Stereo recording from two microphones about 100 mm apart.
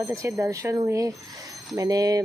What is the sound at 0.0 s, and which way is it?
Speech, 30° right (ahead or behind).